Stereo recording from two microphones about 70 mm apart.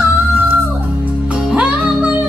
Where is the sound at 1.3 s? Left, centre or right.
Centre.